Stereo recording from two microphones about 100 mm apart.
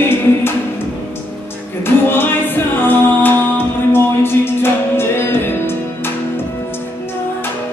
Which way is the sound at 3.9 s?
25° left (ahead or behind).